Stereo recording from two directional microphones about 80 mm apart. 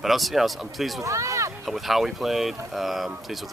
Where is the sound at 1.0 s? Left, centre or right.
Right.